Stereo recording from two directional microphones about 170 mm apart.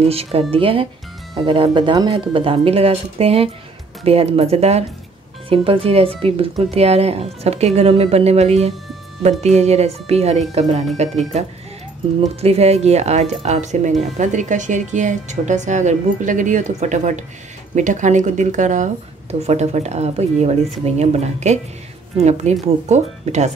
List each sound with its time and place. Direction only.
0.1 s a woman's voice: 35° right (ahead or behind)
12.4 s a woman's voice: 35° right (ahead or behind)